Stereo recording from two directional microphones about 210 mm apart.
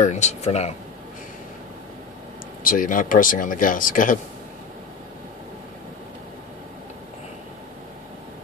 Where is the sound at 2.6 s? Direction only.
40° left (ahead or behind).